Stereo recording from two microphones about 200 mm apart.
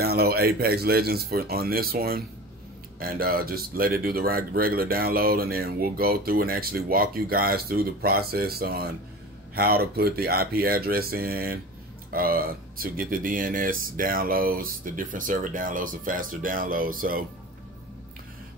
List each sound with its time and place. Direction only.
0.0 s speech: 50° right (ahead or behind)